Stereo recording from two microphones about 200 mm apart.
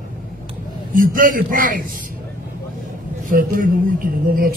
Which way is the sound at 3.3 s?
45° right (ahead or behind).